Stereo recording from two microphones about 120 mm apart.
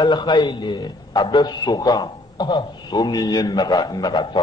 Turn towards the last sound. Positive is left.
turn(degrees=35)  # may be behind; listen again after turning